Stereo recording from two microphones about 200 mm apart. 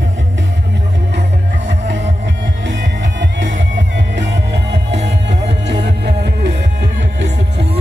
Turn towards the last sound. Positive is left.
turn(degrees=-60)  # may be behind; listen again after turning